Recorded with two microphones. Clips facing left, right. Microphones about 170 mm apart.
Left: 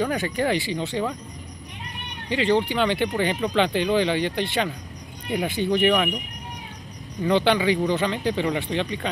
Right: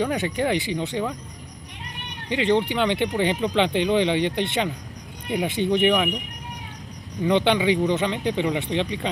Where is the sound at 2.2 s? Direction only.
20° right (ahead or behind).